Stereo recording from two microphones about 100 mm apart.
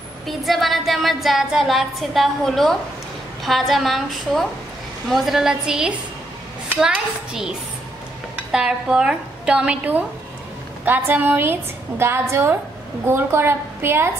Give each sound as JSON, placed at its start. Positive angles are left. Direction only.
{"t": 0.3, "sound": "a woman's voice", "side_deg": 0}
{"t": 8.5, "sound": "a woman's voice", "side_deg": -5}